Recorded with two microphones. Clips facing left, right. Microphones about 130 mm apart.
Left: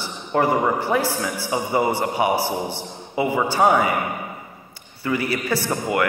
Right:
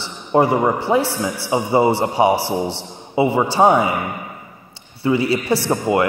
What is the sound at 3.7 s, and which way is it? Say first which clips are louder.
Speech: right 3 dB; 15° right (ahead or behind).